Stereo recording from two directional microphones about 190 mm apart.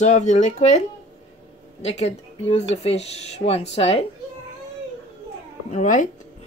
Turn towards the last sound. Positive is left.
turn(degrees=40)  # may be behind; listen again after turning